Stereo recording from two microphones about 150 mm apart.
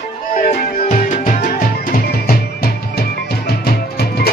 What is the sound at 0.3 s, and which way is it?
Music, 65° left (ahead or behind).